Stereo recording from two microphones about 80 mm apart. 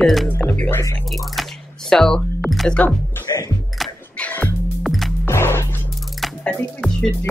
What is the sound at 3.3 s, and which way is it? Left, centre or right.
Music, left.